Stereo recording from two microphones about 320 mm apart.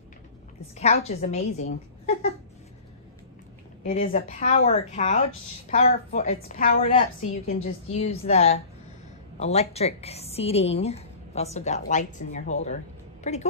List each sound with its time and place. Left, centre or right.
0.7 s a woman's voice: centre
3.8 s a woman's voice: left